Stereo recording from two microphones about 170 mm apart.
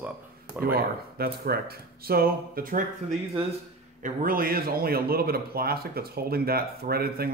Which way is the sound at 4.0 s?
55° right (ahead or behind).